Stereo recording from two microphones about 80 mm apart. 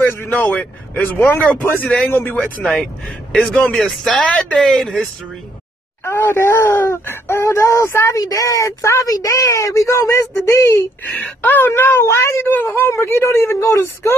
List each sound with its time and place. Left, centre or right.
0.0 s a man's voice: left
2.6 s speech: centre
6.0 s speech: left
11.1 s speech: left